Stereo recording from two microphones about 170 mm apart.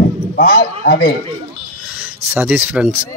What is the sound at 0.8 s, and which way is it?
Speech, 70° left (ahead or behind).